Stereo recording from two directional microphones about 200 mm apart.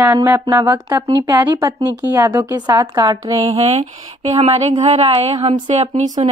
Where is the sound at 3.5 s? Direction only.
30° right (ahead or behind).